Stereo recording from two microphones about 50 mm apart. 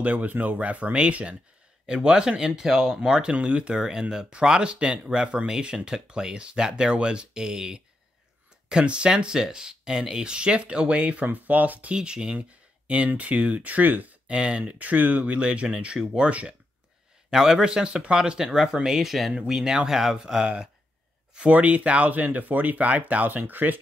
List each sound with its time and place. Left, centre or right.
0.0 s speech: right
11.9 s speech: centre
14.2 s speech: centre
14.6 s speech: right
21.5 s speech: right